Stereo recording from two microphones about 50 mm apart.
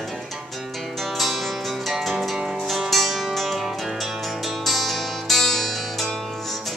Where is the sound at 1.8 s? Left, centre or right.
Centre.